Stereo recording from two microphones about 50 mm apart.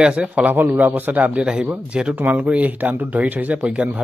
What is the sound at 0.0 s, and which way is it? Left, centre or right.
Speech, centre.